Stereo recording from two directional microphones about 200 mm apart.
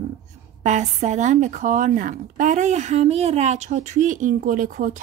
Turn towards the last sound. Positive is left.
turn(degrees=-40)  # may be behind; listen again after turning